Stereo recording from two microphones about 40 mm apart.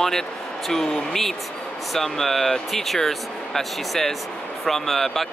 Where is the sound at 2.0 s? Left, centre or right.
Centre.